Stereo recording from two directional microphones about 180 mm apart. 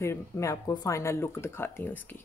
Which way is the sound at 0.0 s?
15° left (ahead or behind).